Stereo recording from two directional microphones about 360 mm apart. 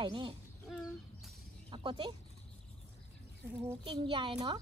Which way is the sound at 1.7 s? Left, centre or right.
Centre.